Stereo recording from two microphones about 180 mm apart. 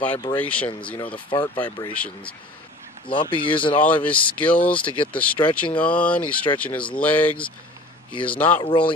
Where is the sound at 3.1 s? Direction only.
30° left (ahead or behind).